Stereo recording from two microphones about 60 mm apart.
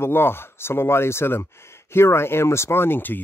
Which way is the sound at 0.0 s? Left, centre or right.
Left.